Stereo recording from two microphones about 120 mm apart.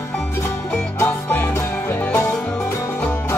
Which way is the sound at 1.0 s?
20° left (ahead or behind).